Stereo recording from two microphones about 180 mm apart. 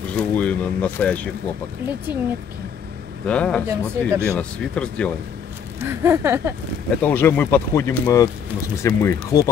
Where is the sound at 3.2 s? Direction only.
5° left (ahead or behind).